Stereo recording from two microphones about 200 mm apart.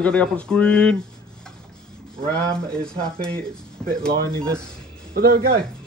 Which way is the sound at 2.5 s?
5° left (ahead or behind).